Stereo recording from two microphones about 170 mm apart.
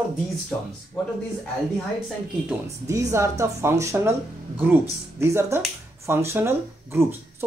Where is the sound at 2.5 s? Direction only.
15° right (ahead or behind).